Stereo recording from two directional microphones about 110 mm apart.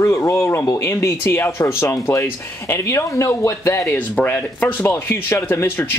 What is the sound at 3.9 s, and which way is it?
Speech, 15° left (ahead or behind).